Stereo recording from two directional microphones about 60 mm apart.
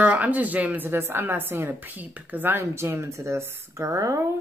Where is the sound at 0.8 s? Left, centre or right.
Right.